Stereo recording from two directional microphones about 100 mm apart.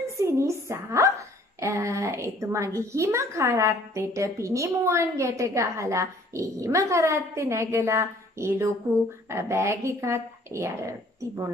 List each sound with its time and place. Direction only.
0.2 s a woman's voice: 30° right (ahead or behind)